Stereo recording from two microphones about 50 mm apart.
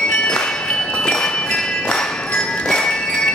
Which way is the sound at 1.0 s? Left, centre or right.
Centre.